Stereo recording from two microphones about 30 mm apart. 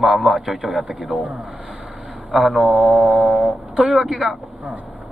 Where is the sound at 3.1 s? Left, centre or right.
Right.